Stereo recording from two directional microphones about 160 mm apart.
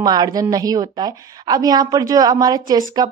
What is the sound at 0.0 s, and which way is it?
Speech, 25° right (ahead or behind).